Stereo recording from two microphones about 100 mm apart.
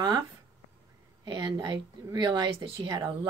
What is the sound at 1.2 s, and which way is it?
A woman's voice, 50° right (ahead or behind).